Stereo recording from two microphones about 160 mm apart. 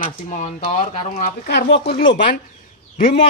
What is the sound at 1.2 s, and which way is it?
Speech, 80° left.